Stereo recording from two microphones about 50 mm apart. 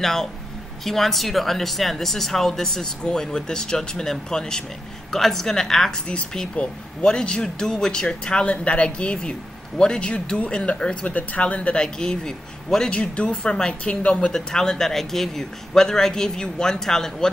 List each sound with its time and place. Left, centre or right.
0.0 s a woman's voice: centre
5.9 s speech: left
11.1 s speech: left; by 12.9 s centre
12.9 s speech: left